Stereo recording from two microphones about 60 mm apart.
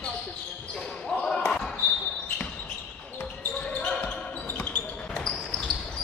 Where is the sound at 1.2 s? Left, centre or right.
Centre.